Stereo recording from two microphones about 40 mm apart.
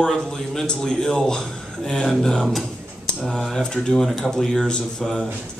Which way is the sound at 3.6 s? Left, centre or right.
Centre.